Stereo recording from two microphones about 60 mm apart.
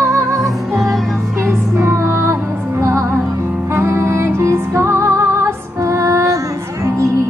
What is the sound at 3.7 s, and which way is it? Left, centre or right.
Music, right.